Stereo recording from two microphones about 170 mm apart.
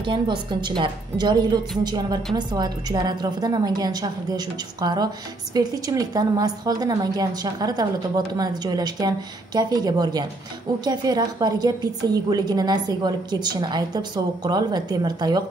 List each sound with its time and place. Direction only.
0.0 s a woman's voice: 30° right (ahead or behind)